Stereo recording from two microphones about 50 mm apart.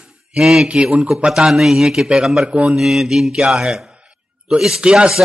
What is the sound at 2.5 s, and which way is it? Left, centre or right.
Speech, right.